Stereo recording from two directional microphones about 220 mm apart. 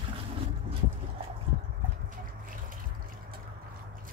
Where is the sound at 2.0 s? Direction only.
40° right (ahead or behind).